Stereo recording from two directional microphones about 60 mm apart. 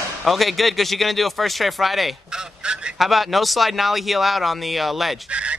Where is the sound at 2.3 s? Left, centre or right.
Centre.